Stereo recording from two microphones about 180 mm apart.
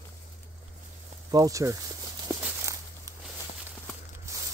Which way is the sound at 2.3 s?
10° right (ahead or behind).